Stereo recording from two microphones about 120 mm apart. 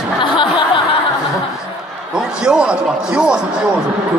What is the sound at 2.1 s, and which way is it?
Speech, 5° right (ahead or behind).